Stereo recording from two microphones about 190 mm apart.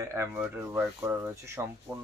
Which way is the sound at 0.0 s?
15° right (ahead or behind).